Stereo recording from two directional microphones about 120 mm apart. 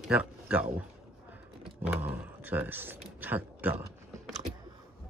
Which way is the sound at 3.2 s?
15° right (ahead or behind).